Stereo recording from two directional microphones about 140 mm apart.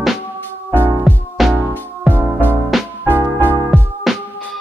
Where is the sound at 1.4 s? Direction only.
Centre (ahead or behind).